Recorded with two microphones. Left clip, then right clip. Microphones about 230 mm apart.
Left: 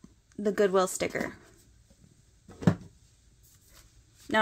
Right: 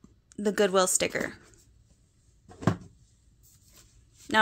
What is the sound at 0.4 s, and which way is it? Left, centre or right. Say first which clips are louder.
Speech: right 1 dB; centre.